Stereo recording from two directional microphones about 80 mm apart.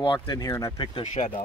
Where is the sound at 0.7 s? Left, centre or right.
Left.